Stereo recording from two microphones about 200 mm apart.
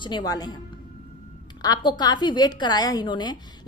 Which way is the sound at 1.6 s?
20° left (ahead or behind).